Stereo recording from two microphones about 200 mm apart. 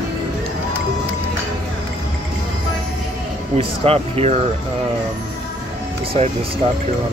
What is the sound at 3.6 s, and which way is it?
Speech, 30° right (ahead or behind).